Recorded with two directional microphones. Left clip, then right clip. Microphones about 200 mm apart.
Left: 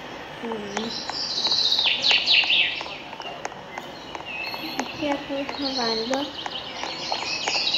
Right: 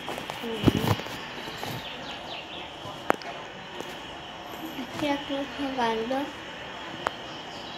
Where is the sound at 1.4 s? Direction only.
55° left (ahead or behind).